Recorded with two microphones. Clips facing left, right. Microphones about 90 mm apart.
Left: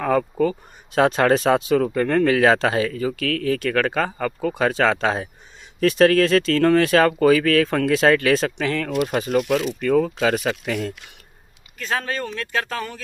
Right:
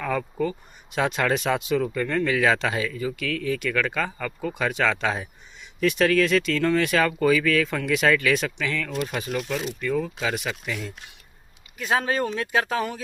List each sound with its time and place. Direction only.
0.0 s speech: 45° left (ahead or behind)
4.6 s speech: 35° left (ahead or behind)
9.8 s speech: 60° left (ahead or behind)
10.3 s speech: 45° left (ahead or behind)
11.8 s speech: 10° right (ahead or behind)